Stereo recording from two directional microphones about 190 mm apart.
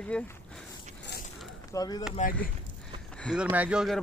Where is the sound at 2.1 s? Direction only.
45° left (ahead or behind).